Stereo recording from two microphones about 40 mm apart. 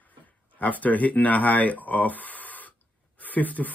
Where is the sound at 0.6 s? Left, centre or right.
Left.